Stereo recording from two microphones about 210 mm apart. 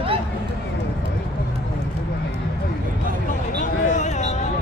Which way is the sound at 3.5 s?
35° left (ahead or behind).